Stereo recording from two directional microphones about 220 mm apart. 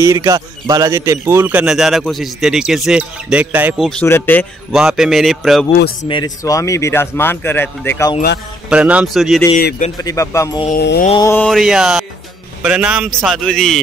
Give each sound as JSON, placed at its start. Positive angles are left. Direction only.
{"t": 0.0, "sound": "a man's voice", "side_deg": -15}
{"t": 4.7, "sound": "a man's voice", "side_deg": 0}
{"t": 6.0, "sound": "speech", "side_deg": 20}
{"t": 8.6, "sound": "a man's voice", "side_deg": -5}
{"t": 9.9, "sound": "speech", "side_deg": 15}
{"t": 10.7, "sound": "mantra", "side_deg": 45}
{"t": 11.1, "sound": "mantra", "side_deg": 20}
{"t": 11.3, "sound": "a man's voice", "side_deg": 0}